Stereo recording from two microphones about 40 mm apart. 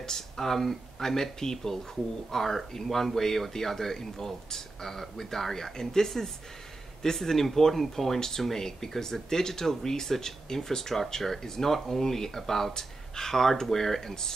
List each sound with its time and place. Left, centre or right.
0.0 s speech: centre